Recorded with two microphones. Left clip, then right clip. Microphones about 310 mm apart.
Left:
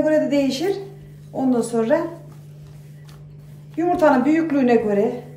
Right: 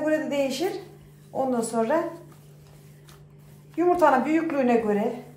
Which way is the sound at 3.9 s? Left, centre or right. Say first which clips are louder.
Left 4 dB; centre.